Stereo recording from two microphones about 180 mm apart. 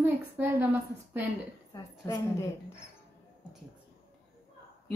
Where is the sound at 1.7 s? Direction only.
20° left (ahead or behind).